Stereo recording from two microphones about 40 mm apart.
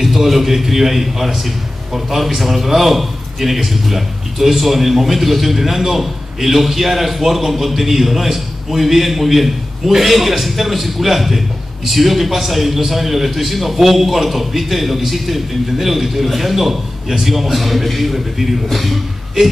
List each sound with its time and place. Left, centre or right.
0.0 s a man's voice: centre